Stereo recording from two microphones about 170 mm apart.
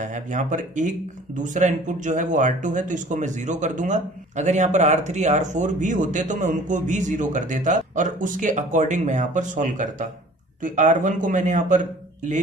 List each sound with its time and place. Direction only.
0.0 s speech: 45° right (ahead or behind)